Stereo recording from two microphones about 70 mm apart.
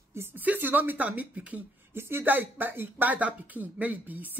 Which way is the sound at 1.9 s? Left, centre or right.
Right.